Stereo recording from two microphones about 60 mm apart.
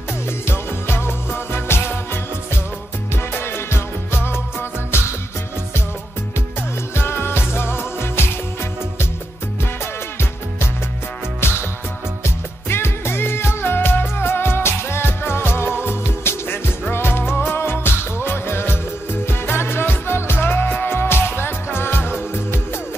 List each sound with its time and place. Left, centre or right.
0.5 s music: left
3.3 s music: left
7.0 s music: left
11.4 s music: left
12.6 s music: left